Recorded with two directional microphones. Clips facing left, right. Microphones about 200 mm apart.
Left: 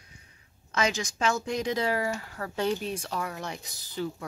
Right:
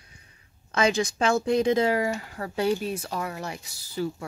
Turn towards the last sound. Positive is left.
turn(degrees=-10)  # may be behind; listen again after turning